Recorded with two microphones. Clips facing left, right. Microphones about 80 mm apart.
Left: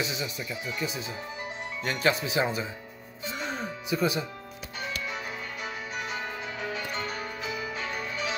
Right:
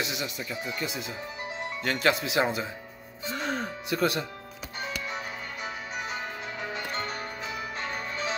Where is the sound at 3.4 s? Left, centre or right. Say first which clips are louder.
Right 2 dB; right.